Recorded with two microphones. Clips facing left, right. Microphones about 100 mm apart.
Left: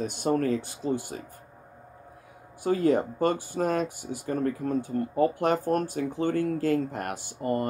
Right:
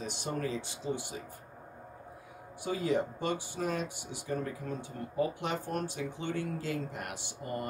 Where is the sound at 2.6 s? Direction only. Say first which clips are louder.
Left 7 dB; 45° left (ahead or behind).